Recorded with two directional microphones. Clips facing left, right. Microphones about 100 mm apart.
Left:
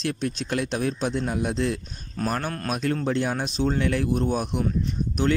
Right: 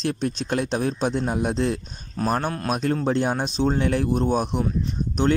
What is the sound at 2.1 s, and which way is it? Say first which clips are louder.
Speech: right 3 dB; 20° right (ahead or behind).